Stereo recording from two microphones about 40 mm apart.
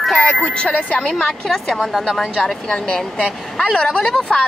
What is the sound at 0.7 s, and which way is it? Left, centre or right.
Speech, left.